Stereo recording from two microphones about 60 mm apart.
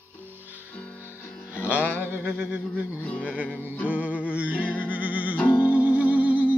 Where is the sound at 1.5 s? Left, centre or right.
Right.